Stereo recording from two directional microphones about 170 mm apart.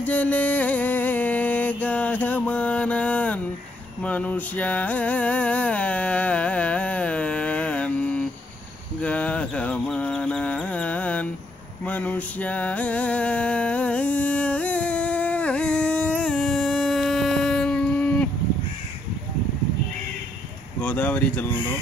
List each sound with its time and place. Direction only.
0.0 s music: 10° left (ahead or behind)
9.0 s a sound: 5° left (ahead or behind)
20.8 s speech: 10° left (ahead or behind)